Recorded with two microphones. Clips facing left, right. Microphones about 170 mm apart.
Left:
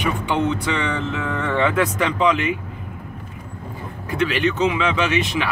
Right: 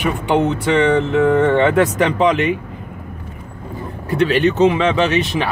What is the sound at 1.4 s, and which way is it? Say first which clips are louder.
Speech: right 6 dB; 35° right (ahead or behind).